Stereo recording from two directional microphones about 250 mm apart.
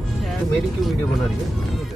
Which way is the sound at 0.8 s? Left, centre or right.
Centre.